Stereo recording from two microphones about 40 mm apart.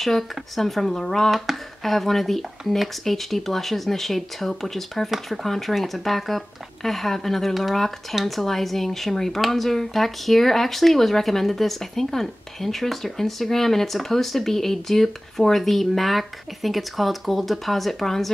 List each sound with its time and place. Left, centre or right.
0.0 s speech: centre
1.3 s speech: centre